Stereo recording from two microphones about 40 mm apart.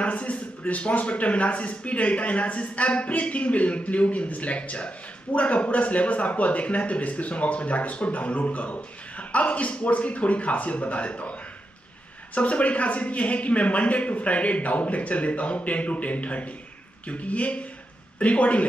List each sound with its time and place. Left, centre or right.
0.0 s a man's voice: left
12.4 s a man's voice: left